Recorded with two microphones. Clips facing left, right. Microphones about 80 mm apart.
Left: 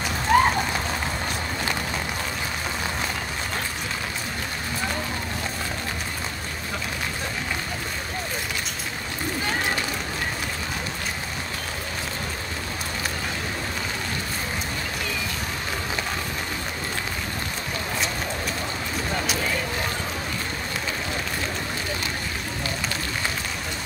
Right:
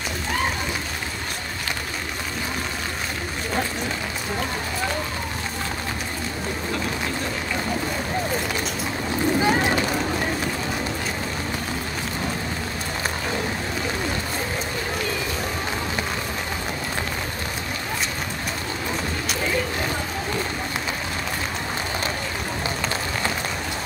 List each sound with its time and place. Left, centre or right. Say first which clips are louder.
0.3 s run: left 9 dB; left